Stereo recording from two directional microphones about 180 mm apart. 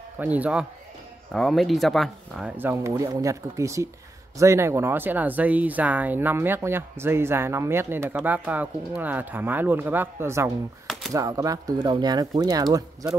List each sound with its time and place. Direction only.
0.2 s speech: 10° right (ahead or behind)
2.5 s speech: 15° right (ahead or behind)
10.9 s typewriter: centre (ahead or behind)
11.1 s speech: 20° right (ahead or behind)